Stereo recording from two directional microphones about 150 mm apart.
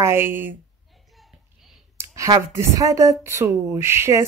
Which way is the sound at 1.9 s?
20° right (ahead or behind).